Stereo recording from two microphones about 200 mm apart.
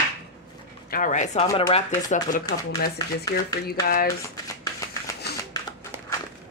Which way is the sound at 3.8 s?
45° left (ahead or behind).